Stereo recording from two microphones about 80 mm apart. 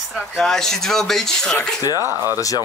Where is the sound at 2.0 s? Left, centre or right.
Right.